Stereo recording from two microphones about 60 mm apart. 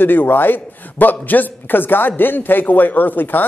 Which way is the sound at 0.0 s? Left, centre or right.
Left.